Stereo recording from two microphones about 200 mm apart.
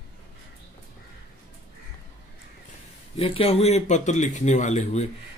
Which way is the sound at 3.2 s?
30° left (ahead or behind).